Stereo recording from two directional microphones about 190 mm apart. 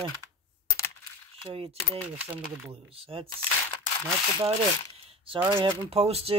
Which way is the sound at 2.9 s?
30° right (ahead or behind).